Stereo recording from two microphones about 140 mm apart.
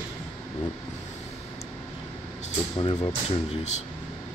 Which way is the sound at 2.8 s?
35° left (ahead or behind).